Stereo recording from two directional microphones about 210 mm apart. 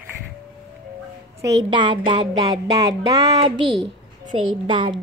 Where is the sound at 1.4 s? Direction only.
15° right (ahead or behind).